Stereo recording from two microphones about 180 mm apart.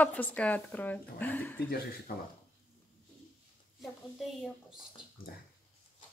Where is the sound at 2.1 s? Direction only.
55° left (ahead or behind).